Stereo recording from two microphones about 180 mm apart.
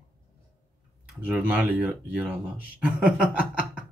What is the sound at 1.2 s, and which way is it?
Speech, 10° right (ahead or behind).